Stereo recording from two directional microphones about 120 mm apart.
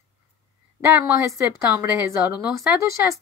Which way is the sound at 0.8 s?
25° right (ahead or behind).